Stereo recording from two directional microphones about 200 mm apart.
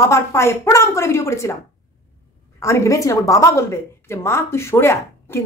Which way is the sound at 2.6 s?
15° left (ahead or behind).